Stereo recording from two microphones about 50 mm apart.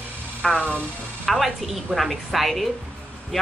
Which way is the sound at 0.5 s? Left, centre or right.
Left.